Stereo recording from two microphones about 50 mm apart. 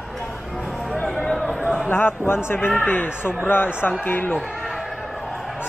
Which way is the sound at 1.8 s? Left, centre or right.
Left.